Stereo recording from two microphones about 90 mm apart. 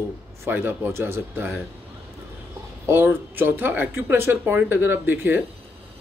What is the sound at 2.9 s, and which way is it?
Speech, 25° right (ahead or behind).